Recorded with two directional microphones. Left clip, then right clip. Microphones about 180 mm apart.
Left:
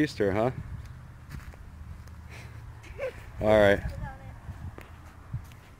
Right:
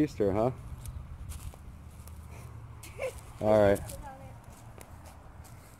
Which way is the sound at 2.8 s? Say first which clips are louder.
Left 2 dB; 60° right (ahead or behind).